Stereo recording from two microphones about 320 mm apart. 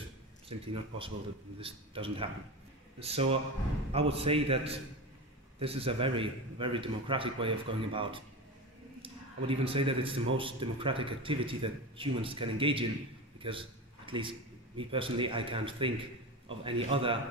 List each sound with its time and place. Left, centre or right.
0.5 s a man's voice: centre
13.4 s a sound: centre
14.8 s a man's voice: centre